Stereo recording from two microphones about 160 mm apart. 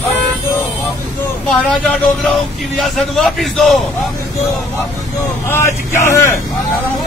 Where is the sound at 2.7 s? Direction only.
Centre (ahead or behind).